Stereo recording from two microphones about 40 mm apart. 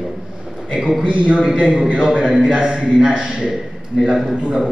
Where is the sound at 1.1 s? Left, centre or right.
Right; by 3.5 s centre.